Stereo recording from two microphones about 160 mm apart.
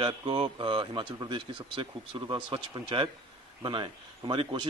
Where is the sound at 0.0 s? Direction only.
35° right (ahead or behind).